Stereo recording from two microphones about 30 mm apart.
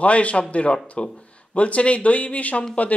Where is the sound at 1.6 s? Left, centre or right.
Left.